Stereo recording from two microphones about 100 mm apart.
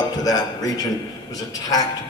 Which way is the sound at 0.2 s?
40° left (ahead or behind).